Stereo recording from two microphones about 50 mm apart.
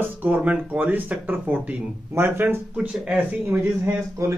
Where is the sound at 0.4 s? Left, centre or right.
Right.